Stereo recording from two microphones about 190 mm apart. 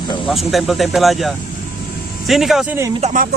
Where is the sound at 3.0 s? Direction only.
35° right (ahead or behind).